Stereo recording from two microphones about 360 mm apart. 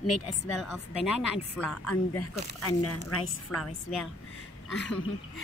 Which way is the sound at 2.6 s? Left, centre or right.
Left.